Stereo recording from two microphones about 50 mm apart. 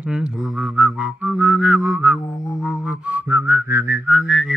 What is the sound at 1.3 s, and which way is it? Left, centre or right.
Whistling, right.